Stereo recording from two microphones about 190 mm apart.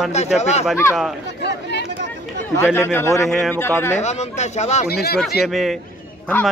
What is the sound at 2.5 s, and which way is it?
Speech, 15° left (ahead or behind).